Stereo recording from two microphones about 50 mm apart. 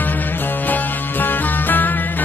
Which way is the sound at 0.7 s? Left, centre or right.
Left.